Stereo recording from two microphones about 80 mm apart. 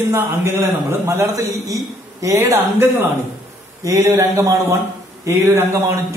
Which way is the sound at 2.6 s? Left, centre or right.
Right.